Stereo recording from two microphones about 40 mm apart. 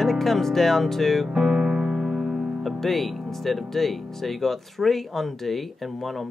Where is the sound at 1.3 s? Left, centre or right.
Centre.